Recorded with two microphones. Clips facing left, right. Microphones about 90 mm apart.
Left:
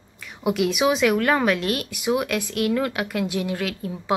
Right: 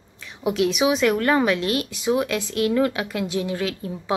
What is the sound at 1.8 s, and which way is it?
A woman's voice, 25° right (ahead or behind).